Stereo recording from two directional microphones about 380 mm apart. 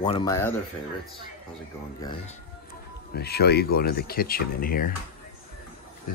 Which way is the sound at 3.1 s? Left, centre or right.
Left.